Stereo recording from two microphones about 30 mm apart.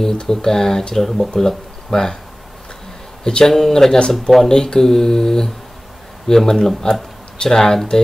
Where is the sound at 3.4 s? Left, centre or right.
Centre.